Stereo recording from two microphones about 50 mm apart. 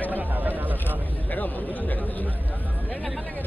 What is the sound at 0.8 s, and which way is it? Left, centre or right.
Speech, left.